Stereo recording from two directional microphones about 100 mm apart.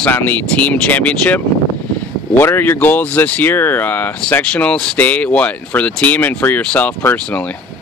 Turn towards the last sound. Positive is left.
turn(degrees=15)  # may be behind; listen again after turning